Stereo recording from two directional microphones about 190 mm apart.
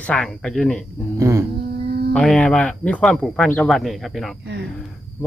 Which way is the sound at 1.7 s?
55° right (ahead or behind).